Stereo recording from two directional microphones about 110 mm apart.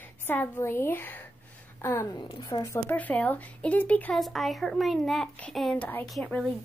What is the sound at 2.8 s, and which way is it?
Speech, 15° left (ahead or behind).